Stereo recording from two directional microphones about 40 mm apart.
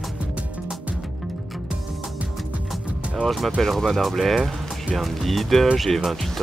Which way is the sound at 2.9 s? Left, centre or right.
Right.